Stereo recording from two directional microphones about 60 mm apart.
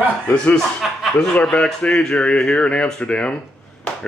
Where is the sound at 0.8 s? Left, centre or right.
Centre.